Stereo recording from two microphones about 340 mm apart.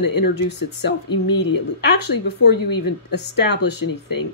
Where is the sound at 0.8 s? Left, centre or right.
Left.